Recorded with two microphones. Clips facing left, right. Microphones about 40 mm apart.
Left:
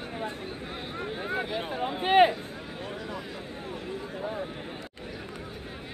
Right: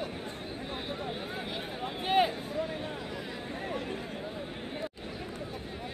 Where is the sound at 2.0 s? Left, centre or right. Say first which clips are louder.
Left 6 dB; left.